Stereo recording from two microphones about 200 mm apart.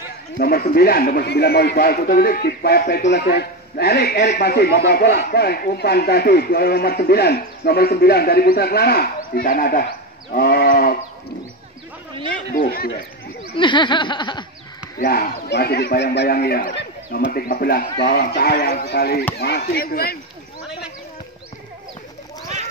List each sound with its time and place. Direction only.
0.4 s a man's voice: 50° left (ahead or behind)
12.5 s a man's voice: 50° left (ahead or behind)
13.6 s snicker: 25° left (ahead or behind)
15.0 s a man's voice: 50° left (ahead or behind)